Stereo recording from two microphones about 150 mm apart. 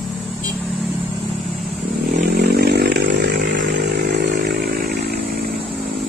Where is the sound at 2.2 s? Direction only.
90° right.